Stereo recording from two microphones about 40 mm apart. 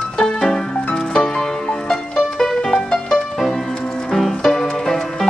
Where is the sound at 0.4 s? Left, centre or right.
Centre.